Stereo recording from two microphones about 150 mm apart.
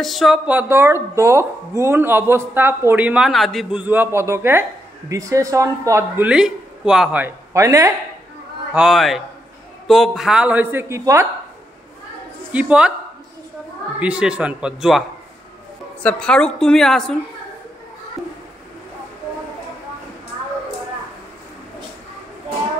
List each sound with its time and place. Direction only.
0.0 s speech: centre (ahead or behind)
3.8 s speech: 10° right (ahead or behind)
7.5 s speech: 20° right (ahead or behind)
8.7 s a woman's voice: centre (ahead or behind); by 11.2 s 20° right (ahead or behind)
12.5 s speech: 10° right (ahead or behind)
13.9 s a woman's voice: 10° right (ahead or behind)